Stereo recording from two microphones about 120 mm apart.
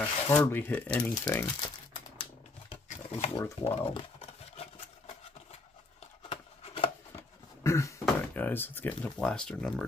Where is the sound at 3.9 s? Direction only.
50° left (ahead or behind).